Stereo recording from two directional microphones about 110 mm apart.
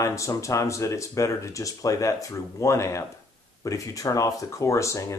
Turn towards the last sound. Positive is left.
turn(degrees=30)  # may be behind; listen again after turning